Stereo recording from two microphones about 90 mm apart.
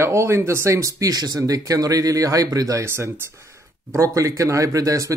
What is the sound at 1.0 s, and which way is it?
Speech, 45° right (ahead or behind).